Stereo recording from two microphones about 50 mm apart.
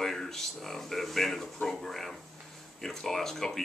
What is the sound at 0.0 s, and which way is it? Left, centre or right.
Speech, centre.